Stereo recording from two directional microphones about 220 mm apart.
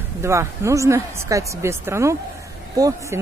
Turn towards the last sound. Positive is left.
turn(degrees=-15)  # may be behind; listen again after turning